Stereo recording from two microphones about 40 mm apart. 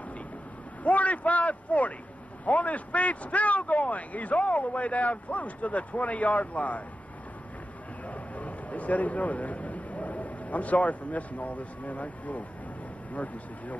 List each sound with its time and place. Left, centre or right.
0.8 s a man's voice: left
8.1 s a man's voice: left